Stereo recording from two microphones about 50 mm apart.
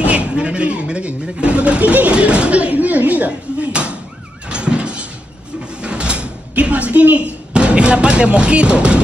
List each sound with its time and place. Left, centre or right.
0.0 s a sound: right
4.5 s vehicle: right
5.8 s door: centre
7.5 s speech: right